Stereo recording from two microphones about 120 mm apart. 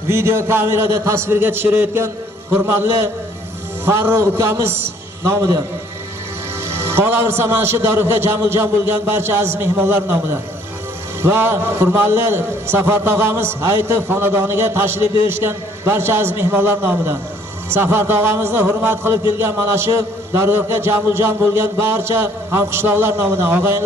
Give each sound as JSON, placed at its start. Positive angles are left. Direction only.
{"t": 0.1, "sound": "a man's voice", "side_deg": -20}
{"t": 6.7, "sound": "a man's voice", "side_deg": -20}